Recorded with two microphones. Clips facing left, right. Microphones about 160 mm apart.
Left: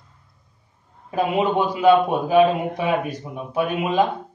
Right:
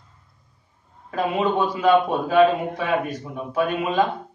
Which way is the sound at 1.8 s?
15° left (ahead or behind).